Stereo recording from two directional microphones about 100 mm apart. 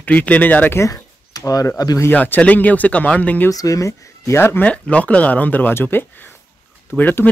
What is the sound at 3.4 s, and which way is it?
Speech, 35° left (ahead or behind).